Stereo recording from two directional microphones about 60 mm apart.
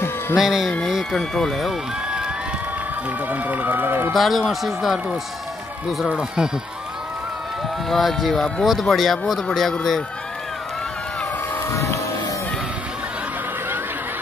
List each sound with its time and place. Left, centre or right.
0.4 s speech: centre
0.7 s speech: centre
3.3 s speech: right
4.1 s speech: centre
6.1 s speech: centre
7.9 s speech: centre
11.7 s a sound: left